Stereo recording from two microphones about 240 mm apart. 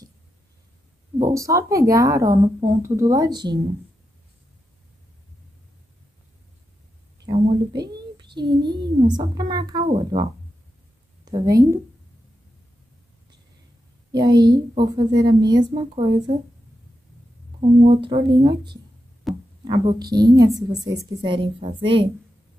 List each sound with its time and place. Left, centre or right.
1.1 s speech: centre
7.2 s a child's voice: centre
11.2 s speech: centre
14.1 s speech: centre
17.6 s speech: right
19.3 s a sound: centre
20.1 s speech: centre